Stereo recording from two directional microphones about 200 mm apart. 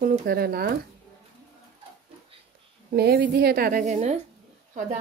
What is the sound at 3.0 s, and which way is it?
A woman's voice, 55° right (ahead or behind).